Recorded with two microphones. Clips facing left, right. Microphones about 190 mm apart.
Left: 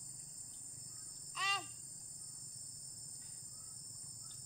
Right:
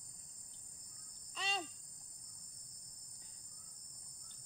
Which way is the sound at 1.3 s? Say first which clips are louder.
Right 3 dB; 30° right (ahead or behind).